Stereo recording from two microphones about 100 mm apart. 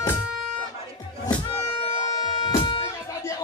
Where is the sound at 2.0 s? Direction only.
45° left (ahead or behind).